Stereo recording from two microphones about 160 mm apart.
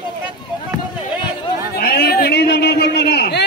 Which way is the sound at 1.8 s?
80° left.